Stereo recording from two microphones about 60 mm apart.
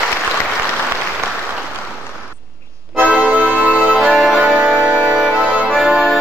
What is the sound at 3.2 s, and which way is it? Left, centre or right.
Music, right.